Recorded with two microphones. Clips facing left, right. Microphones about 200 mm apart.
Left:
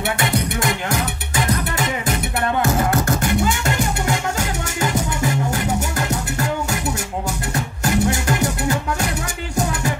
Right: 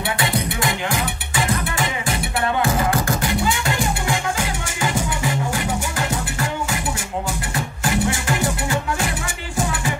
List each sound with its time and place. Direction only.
1.3 s music: 40° left (ahead or behind)
7.5 s music: 40° left (ahead or behind)